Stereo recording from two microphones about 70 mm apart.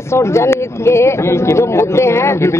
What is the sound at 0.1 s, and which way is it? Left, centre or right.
Speech, left.